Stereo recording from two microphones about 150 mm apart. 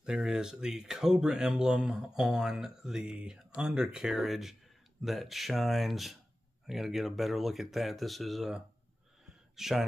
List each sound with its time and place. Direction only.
0.0 s speech: 5° right (ahead or behind)